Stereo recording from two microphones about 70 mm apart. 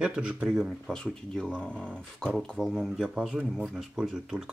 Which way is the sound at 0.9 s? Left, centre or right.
Centre.